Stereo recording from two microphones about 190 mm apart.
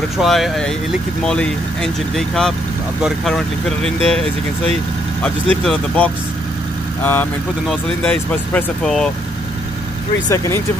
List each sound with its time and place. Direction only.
0.2 s speech: centre (ahead or behind)
5.2 s speech: 5° left (ahead or behind)
10.3 s speech: 15° left (ahead or behind)